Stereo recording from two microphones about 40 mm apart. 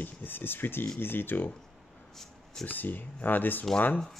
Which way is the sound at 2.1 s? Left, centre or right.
Centre.